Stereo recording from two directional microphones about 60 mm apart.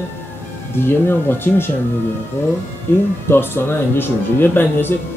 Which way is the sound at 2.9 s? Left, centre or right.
Left.